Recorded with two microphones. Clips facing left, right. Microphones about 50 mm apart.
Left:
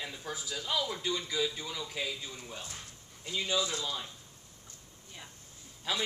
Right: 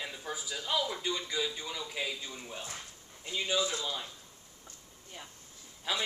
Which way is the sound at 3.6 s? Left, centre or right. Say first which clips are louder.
Right 1 dB; centre.